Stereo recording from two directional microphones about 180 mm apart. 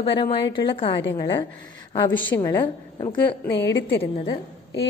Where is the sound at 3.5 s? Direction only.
75° left (ahead or behind).